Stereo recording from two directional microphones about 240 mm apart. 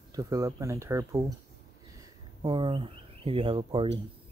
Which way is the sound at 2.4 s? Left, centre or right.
Centre.